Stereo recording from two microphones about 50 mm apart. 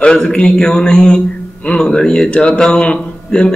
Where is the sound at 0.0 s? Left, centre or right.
Centre.